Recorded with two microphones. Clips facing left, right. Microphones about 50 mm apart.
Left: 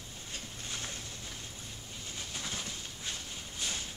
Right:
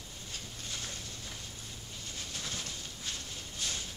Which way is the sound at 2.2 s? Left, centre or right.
Centre.